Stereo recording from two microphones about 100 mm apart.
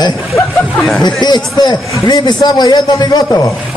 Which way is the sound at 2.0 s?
45° left (ahead or behind).